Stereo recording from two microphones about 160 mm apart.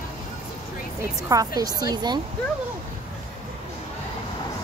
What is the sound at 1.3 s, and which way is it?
Speech, 20° right (ahead or behind).